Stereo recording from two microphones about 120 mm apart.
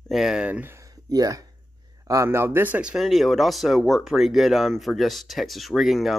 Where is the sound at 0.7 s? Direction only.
30° right (ahead or behind).